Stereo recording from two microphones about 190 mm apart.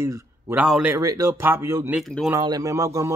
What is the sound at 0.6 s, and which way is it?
Speech, 5° right (ahead or behind).